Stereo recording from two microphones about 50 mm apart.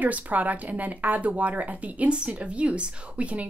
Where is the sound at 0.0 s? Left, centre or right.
Right.